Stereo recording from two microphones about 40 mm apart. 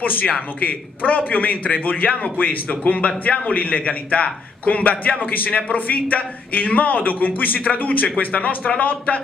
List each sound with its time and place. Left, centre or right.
0.0 s a man's voice: left
3.5 s a man's voice: left